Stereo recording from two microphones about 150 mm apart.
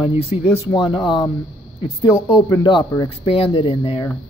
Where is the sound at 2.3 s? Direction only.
35° left (ahead or behind).